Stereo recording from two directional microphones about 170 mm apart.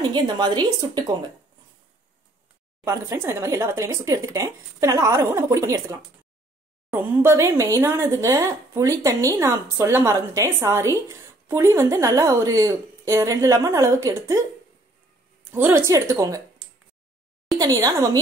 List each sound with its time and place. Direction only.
0.0 s a woman's voice: 25° right (ahead or behind)
2.8 s speech: 15° right (ahead or behind)
15.5 s a woman's voice: 10° right (ahead or behind)
17.6 s a woman's voice: 20° right (ahead or behind)